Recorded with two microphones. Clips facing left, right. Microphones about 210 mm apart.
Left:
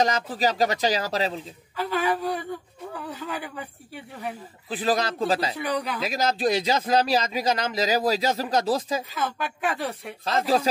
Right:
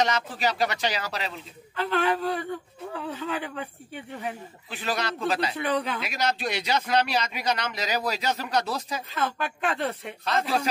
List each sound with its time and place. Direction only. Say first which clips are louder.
0.0 s speech: left 2 dB; 35° left (ahead or behind)
1.8 s speech: even; 5° left (ahead or behind)
4.6 s speech: left 5 dB; 35° left (ahead or behind)
5.6 s speech: right 1 dB; centre (ahead or behind)
6.3 s speech: left 5 dB; 35° left (ahead or behind)
9.1 s speech: even; centre (ahead or behind)
10.3 s speech: left 4 dB; 35° left (ahead or behind)